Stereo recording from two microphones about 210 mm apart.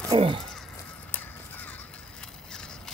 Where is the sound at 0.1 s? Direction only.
25° right (ahead or behind).